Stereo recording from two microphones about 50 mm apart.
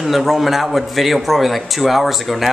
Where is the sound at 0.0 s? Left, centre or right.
Centre.